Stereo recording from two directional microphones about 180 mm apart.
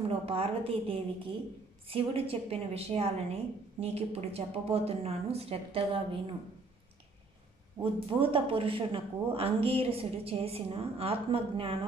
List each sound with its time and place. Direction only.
0.2 s a woman's voice: 30° right (ahead or behind)
7.8 s a woman's voice: 30° right (ahead or behind)